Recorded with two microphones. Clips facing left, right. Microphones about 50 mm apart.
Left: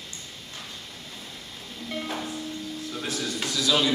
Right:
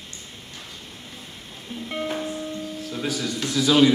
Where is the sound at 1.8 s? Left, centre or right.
Centre.